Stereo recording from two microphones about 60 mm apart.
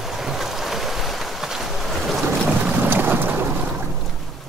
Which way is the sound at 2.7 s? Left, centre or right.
Right.